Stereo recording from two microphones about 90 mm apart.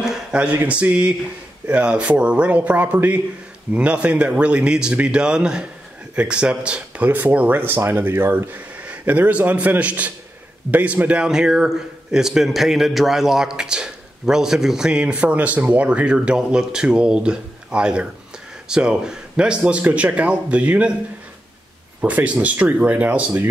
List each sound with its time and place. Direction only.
0.0 s a man's voice: 5° right (ahead or behind)
22.0 s a man's voice: 15° right (ahead or behind)